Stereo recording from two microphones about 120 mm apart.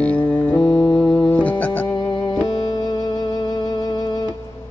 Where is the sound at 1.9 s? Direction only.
40° left (ahead or behind).